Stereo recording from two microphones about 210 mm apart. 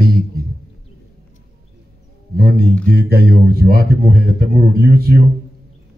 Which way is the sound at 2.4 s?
45° right (ahead or behind).